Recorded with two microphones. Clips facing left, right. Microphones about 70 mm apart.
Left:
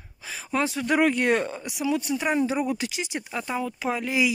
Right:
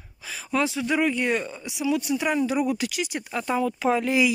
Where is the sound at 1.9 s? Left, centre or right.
Left.